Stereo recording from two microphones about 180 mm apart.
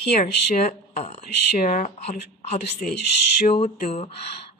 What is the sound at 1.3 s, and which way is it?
Speech, 50° left (ahead or behind).